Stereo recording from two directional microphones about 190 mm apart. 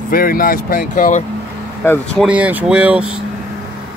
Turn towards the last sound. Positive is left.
turn(degrees=-5)  # may be behind; listen again after turning